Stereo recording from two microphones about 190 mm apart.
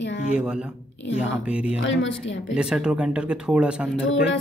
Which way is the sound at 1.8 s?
80° left.